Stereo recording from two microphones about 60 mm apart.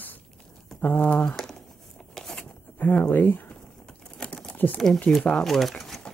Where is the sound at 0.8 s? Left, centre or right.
Left.